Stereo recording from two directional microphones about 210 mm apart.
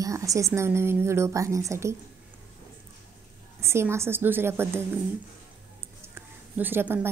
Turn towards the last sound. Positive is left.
turn(degrees=-10)  # may be behind; listen again after turning